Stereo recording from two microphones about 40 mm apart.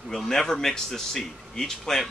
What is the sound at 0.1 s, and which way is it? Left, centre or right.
Speech, centre.